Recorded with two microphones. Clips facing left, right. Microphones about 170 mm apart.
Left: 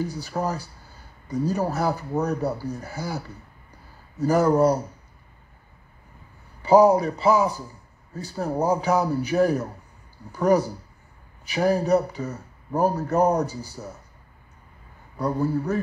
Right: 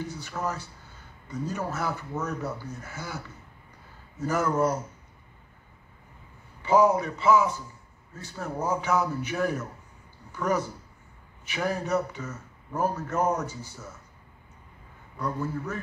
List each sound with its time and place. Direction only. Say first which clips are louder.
0.0 s speech: left 5 dB; 35° left (ahead or behind)
6.6 s speech: left 5 dB; 35° left (ahead or behind)
15.1 s speech: left 7 dB; 35° left (ahead or behind)